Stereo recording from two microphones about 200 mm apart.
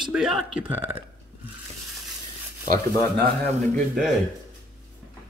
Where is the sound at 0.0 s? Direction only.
5° right (ahead or behind).